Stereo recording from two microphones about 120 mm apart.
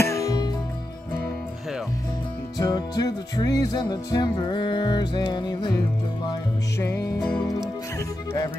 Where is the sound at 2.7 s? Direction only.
30° left (ahead or behind).